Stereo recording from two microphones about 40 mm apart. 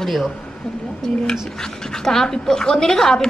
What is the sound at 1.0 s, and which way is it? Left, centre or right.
Speech, centre.